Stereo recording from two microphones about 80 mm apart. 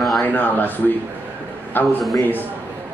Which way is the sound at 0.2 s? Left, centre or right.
Left.